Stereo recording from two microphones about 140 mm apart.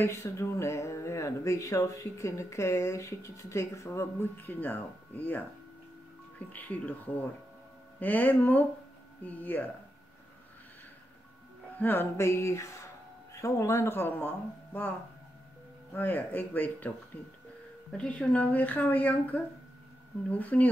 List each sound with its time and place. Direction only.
0.0 s speech: 20° left (ahead or behind)
6.5 s speech: 10° left (ahead or behind)
11.8 s speech: 15° left (ahead or behind)
15.9 s speech: 10° left (ahead or behind)
17.9 s speech: 10° left (ahead or behind)